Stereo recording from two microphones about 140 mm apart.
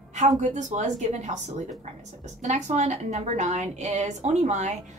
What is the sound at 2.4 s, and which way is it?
Speech, 55° right (ahead or behind).